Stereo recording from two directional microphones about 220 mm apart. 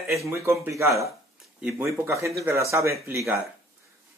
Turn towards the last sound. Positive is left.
turn(degrees=-10)  # may be behind; listen again after turning